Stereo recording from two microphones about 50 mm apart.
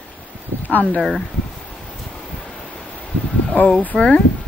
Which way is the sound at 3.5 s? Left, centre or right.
Left.